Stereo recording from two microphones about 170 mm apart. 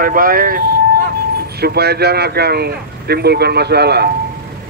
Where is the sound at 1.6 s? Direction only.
70° right (ahead or behind).